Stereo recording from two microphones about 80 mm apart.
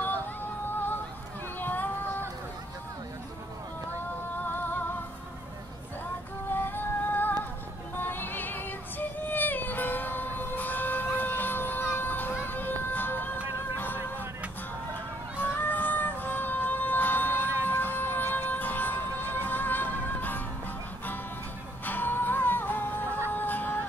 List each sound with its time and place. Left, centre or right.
0.0 s music: left
1.6 s a sound: left
4.5 s music: left
6.5 s music: left
15.6 s music: left
21.8 s music: left
23.0 s music: right
23.3 s music: left